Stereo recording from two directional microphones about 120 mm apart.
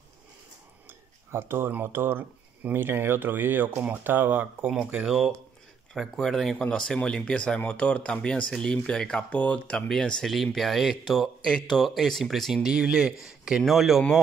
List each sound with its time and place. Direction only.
0.8 s speech: 20° right (ahead or behind); by 14.2 s centre (ahead or behind)